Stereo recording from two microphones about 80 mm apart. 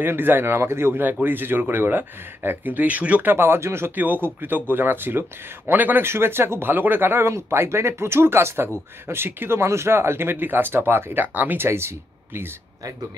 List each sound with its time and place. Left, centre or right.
0.0 s speech: right